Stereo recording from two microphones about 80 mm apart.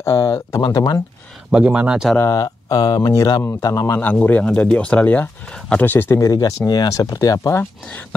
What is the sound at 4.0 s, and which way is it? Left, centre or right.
Speech, left.